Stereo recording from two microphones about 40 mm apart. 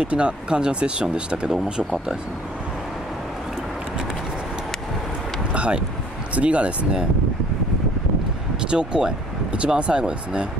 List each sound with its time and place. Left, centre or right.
0.0 s speech: right
5.5 s wind: right
6.3 s speech: right
8.6 s speech: right